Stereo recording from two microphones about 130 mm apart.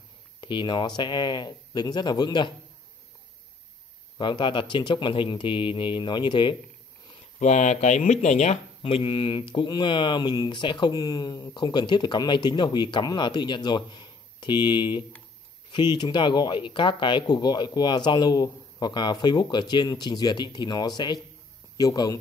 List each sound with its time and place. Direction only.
0.4 s speech: 40° left (ahead or behind)
4.2 s speech: 35° left (ahead or behind)
7.3 s speech: 65° left (ahead or behind)
8.8 s speech: 40° left (ahead or behind)